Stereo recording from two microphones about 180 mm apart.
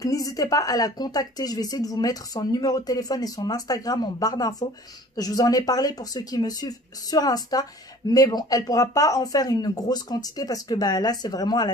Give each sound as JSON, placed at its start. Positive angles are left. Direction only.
{"t": 0.0, "sound": "speech", "side_deg": 20}